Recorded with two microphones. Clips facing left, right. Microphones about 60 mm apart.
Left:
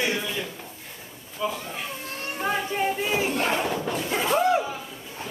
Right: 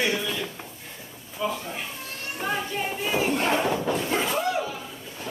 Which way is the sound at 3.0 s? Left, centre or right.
Centre.